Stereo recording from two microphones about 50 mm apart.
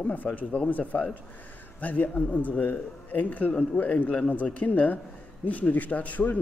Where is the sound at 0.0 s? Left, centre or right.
Left.